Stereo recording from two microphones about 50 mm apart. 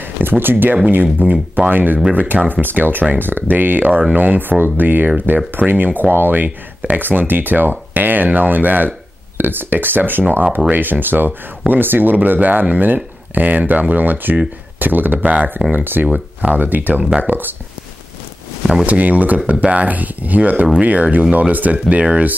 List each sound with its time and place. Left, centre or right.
0.0 s a sound: right
1.2 s speech: right
18.9 s speech: right